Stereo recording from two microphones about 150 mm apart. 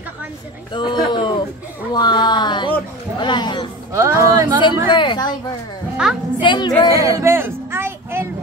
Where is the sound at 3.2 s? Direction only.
30° left (ahead or behind).